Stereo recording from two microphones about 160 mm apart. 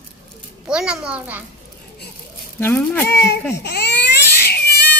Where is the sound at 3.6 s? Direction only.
90° left.